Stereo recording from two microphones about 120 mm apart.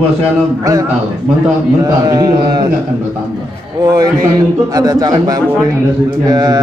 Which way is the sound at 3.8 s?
35° right (ahead or behind).